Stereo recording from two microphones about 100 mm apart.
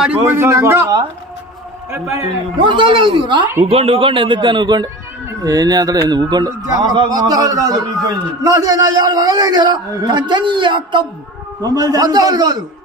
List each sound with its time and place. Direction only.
0.3 s a man's voice: 30° right (ahead or behind)
2.5 s a man's voice: 55° right (ahead or behind)
3.6 s a man's voice: 70° right (ahead or behind); by 11.1 s 55° right (ahead or behind)
11.6 s a man's voice: 40° right (ahead or behind)